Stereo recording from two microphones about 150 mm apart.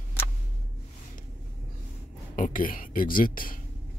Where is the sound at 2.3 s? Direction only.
65° left (ahead or behind).